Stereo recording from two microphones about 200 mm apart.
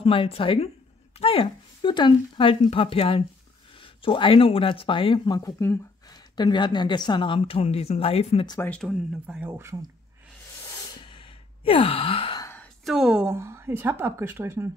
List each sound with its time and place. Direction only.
0.0 s speech: 30° left (ahead or behind)
8.5 s speech: 5° left (ahead or behind)
9.4 s speech: 10° right (ahead or behind)
11.0 s sigh: 25° left (ahead or behind)
12.4 s a sound: 10° left (ahead or behind)
12.9 s speech: 5° right (ahead or behind)
13.3 s speech: 15° right (ahead or behind)